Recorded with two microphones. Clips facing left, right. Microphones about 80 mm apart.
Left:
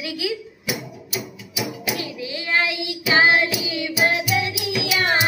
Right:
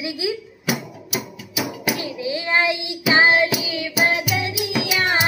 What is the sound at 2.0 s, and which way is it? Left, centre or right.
Child singing, right.